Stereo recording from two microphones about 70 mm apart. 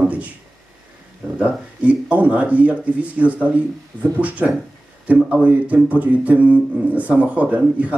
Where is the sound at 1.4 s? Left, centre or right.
Centre.